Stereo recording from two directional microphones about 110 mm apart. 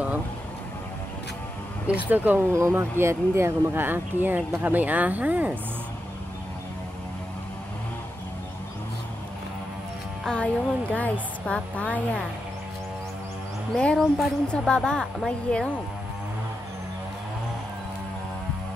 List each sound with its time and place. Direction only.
1.9 s speech: 15° right (ahead or behind)
10.2 s a woman's voice: 10° left (ahead or behind)
13.7 s a woman's voice: 5° left (ahead or behind)